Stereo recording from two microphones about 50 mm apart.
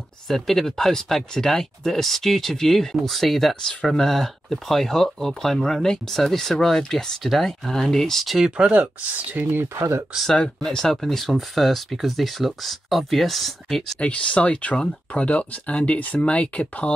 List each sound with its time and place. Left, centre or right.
0.3 s speech: centre
8.4 s speech: centre
10.3 s speech: centre
13.9 s speech: left